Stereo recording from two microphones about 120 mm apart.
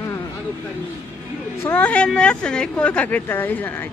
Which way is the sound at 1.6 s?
15° left (ahead or behind).